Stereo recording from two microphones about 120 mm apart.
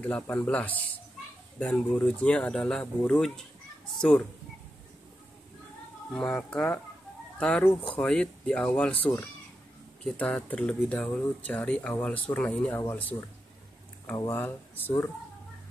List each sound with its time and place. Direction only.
0.0 s speech: 15° left (ahead or behind)
6.1 s speech: 10° left (ahead or behind)
14.1 s speech: 20° left (ahead or behind)